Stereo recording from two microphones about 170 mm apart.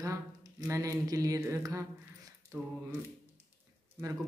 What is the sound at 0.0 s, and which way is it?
Speech, 20° right (ahead or behind).